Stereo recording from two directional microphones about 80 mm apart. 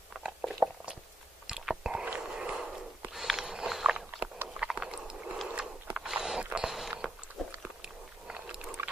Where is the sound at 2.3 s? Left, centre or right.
Centre.